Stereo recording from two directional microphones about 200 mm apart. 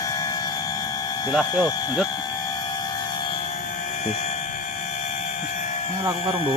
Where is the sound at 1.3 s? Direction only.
5° right (ahead or behind).